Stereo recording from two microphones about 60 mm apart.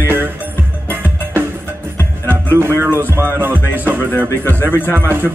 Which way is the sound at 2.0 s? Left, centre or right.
Left.